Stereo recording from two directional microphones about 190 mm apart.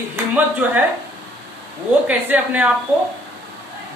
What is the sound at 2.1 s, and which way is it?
Speech, 5° right (ahead or behind).